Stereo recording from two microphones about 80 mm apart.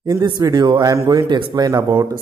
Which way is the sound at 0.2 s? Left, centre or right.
Right.